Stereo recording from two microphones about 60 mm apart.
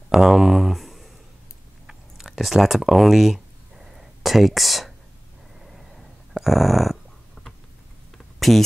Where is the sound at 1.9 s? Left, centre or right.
Centre.